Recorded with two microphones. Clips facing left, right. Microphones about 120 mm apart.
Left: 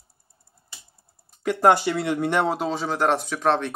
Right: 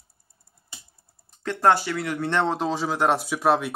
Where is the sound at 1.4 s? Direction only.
15° left (ahead or behind).